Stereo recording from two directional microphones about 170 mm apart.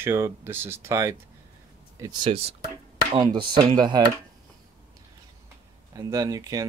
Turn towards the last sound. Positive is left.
turn(degrees=-20)  # may be behind; listen again after turning